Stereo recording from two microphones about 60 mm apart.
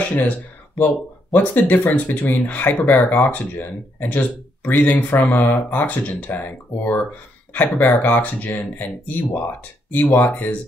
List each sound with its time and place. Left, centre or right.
0.0 s speech: left
1.3 s speech: left